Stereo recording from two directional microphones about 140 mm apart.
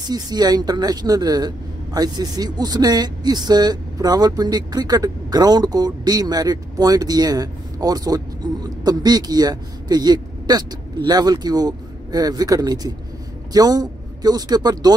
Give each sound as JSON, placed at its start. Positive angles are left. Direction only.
{"t": 0.0, "sound": "a man's voice", "side_deg": -30}